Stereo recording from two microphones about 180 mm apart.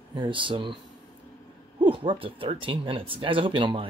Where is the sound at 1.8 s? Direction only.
30° right (ahead or behind).